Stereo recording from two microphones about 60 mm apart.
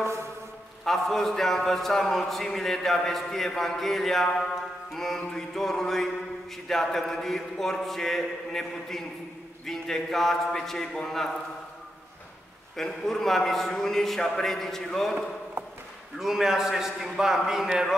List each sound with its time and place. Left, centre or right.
0.0 s a man's voice: right
0.8 s a man's voice: centre
12.7 s a man's voice: centre
16.2 s a man's voice: centre